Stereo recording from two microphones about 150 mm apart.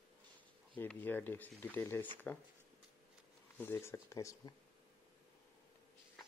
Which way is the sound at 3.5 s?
15° left (ahead or behind).